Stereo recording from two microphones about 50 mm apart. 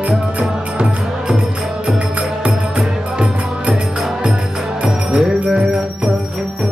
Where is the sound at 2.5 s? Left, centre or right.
Right.